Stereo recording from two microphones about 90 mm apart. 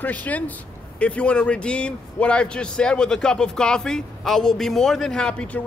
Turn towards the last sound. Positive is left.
turn(degrees=15)  # may be behind; listen again after turning